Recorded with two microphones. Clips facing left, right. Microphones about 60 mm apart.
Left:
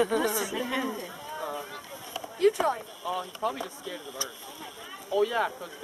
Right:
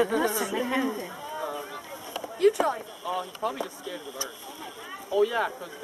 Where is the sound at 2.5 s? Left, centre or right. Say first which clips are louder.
Right 1 dB; centre.